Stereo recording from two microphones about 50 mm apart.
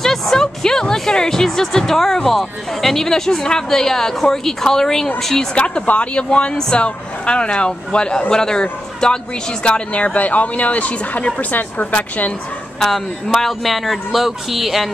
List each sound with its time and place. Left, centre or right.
0.0 s speech: centre
5.5 s a woman's voice: left
12.8 s speech: centre